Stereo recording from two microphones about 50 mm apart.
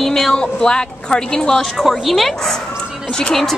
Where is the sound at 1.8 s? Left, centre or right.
Centre.